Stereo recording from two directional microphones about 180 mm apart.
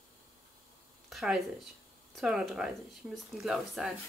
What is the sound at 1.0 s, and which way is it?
Speech, centre (ahead or behind).